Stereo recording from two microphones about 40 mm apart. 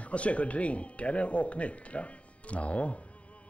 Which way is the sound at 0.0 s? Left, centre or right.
Left.